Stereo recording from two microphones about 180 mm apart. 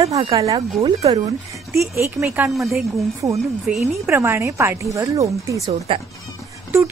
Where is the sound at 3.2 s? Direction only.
20° right (ahead or behind).